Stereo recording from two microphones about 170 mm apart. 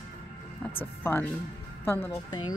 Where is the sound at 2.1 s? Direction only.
25° left (ahead or behind).